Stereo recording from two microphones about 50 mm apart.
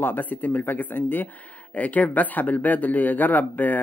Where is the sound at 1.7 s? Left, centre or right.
Left.